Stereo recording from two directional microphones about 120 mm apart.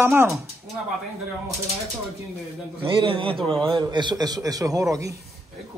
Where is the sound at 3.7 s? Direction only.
40° right (ahead or behind).